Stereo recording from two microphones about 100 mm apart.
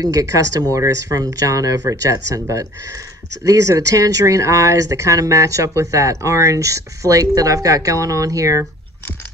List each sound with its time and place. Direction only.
0.0 s speech: 35° right (ahead or behind)